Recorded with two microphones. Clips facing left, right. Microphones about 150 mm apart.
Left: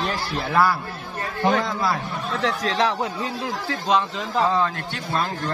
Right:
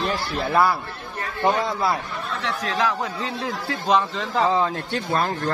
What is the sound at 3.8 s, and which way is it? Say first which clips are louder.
Speech: right 1 dB; centre (ahead or behind).